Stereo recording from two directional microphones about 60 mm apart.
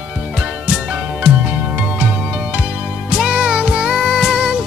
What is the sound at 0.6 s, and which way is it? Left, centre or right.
Music, centre.